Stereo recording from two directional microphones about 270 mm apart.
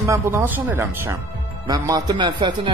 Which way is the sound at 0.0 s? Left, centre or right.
Centre.